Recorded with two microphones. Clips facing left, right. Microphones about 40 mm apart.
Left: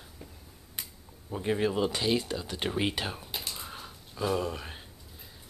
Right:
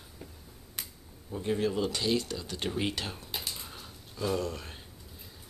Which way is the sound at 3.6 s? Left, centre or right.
Centre.